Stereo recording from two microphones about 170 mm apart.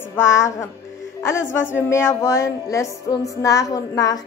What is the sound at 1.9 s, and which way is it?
Music, 15° left (ahead or behind).